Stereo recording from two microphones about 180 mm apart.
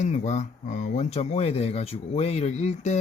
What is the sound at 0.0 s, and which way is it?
Speech, 40° left (ahead or behind).